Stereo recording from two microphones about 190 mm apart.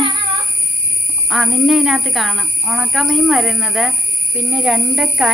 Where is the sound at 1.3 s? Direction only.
Centre (ahead or behind).